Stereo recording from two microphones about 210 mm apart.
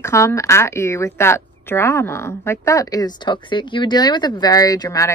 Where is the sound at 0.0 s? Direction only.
15° left (ahead or behind).